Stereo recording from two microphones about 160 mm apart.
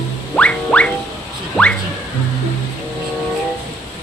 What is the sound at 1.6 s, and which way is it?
Speech, 5° left (ahead or behind).